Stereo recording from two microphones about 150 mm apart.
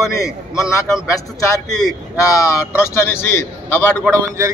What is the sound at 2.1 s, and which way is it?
A man's voice, 20° left (ahead or behind).